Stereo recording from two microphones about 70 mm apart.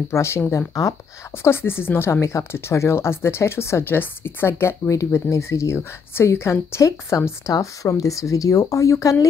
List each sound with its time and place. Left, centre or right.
0.1 s speech: left
7.5 s speech: left